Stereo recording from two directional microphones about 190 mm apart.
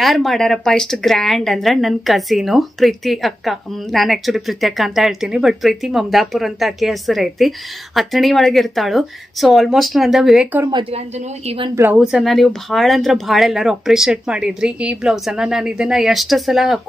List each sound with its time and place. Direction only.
0.0 s speech: centre (ahead or behind)
10.7 s a woman's voice: 25° right (ahead or behind)
11.7 s speech: 10° right (ahead or behind)